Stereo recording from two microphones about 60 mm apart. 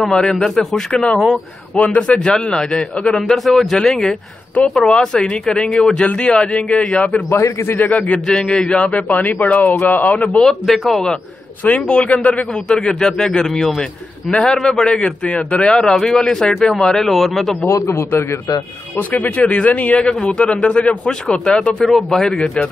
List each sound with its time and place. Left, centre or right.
0.1 s speech: centre
3.3 s speech: centre
7.2 s a man's voice: left
7.7 s a man's voice: left
8.3 s speech: centre
10.4 s speech: centre
11.8 s speech: centre
12.6 s speech: centre
16.0 s speech: centre
17.6 s a man's voice: left
18.9 s speech: left; by 22.7 s centre